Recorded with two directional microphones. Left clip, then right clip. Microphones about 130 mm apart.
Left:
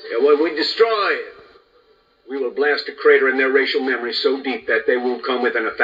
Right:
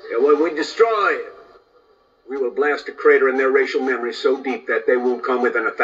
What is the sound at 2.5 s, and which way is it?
Speech, 40° right (ahead or behind).